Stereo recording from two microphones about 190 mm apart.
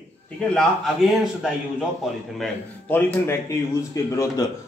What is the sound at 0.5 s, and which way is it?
A man's voice, centre (ahead or behind).